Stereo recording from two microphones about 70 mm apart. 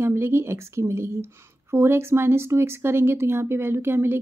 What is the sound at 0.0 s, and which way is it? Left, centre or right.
A woman's voice, right.